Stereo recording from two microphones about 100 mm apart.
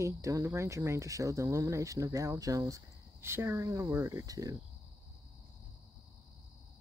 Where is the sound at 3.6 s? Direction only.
35° right (ahead or behind).